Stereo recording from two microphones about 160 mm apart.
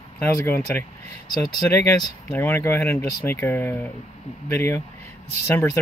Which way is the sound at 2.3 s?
15° left (ahead or behind).